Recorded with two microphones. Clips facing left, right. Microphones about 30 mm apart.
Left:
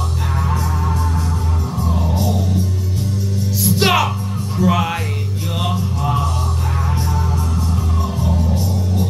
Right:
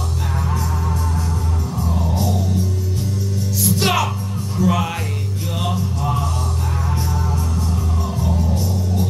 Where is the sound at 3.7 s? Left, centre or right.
Centre.